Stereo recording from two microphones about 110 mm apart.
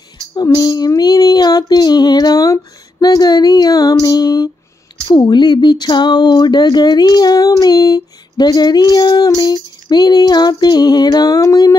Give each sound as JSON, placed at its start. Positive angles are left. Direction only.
{"t": 0.3, "sound": "speech", "side_deg": 40}